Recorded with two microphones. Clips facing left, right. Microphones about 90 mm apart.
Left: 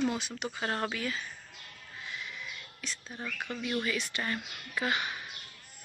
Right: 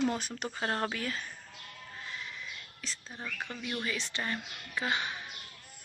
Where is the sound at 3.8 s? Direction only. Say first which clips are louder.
Left 2 dB; 30° right (ahead or behind).